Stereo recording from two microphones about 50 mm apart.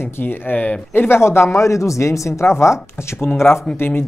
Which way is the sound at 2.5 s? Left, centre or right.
Left.